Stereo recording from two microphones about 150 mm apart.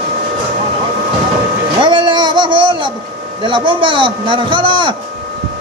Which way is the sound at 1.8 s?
30° right (ahead or behind).